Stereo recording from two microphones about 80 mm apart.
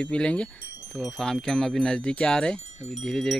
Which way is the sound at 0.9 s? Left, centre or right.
Centre.